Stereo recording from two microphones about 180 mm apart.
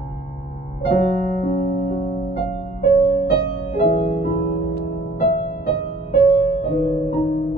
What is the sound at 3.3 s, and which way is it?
Music, 35° left (ahead or behind).